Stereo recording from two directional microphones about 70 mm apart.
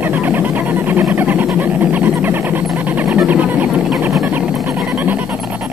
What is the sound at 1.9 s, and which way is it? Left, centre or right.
Music, right.